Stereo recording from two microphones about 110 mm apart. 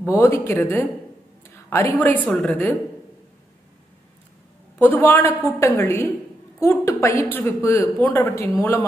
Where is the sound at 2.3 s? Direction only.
15° left (ahead or behind).